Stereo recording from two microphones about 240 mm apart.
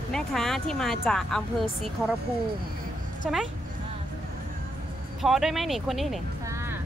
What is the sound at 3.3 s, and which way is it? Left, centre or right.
Speech, centre.